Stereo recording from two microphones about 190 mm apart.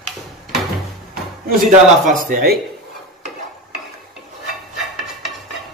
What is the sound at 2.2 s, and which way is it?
Speech, 50° right (ahead or behind).